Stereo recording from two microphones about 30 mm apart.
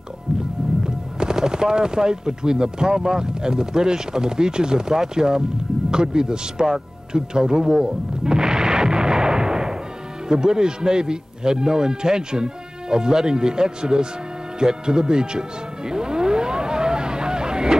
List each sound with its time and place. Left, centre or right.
0.8 s a man's voice: right
7.1 s artillery fire: right
10.2 s a man's voice: right
14.6 s music: right